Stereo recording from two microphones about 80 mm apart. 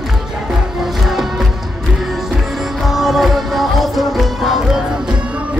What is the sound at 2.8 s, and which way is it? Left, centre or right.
Music, centre.